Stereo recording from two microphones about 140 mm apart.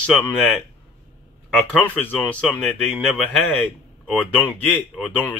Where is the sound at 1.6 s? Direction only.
15° left (ahead or behind).